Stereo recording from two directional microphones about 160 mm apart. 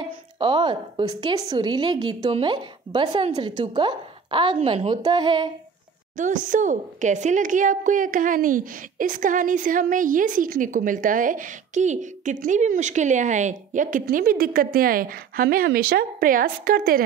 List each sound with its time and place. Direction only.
0.0 s a woman's voice: 30° right (ahead or behind)
6.1 s a woman's voice: 55° right (ahead or behind)